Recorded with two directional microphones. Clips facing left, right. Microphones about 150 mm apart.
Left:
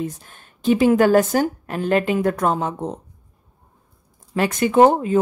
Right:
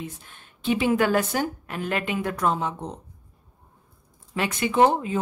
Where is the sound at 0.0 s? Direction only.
40° left (ahead or behind).